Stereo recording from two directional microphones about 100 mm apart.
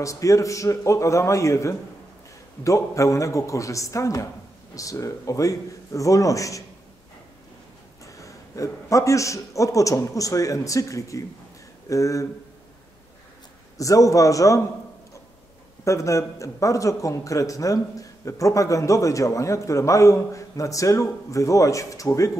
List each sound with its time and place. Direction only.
0.0 s a man's voice: 35° left (ahead or behind)
8.0 s a man's voice: 35° left (ahead or behind)
13.7 s a man's voice: 35° left (ahead or behind)
15.8 s a man's voice: 30° left (ahead or behind)